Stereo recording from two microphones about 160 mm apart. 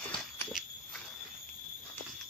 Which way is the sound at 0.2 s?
Centre (ahead or behind).